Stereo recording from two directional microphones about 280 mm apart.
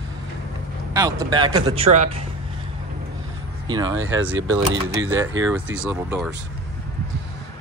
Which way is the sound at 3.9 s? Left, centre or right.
Right.